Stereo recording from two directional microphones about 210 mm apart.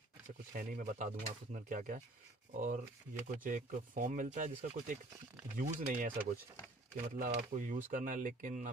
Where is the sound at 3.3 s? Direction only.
40° right (ahead or behind).